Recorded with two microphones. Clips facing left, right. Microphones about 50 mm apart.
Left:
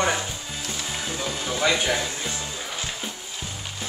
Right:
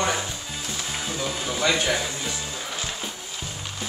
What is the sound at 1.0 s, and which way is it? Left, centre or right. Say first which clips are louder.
Music: right 1 dB; centre.